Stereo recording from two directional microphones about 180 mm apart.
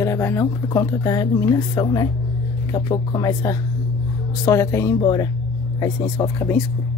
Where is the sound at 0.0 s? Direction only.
15° left (ahead or behind).